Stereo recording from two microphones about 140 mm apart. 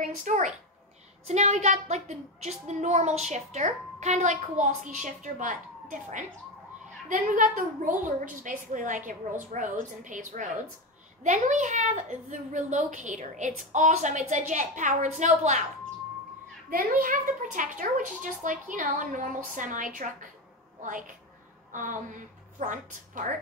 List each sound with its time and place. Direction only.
0.0 s a child's voice: 65° right (ahead or behind)
1.2 s a woman's voice: 55° right (ahead or behind)
16.7 s a woman's voice: 80° right; by 23.3 s 65° right (ahead or behind)